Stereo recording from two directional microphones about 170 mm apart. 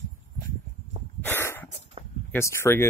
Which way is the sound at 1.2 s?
15° left (ahead or behind).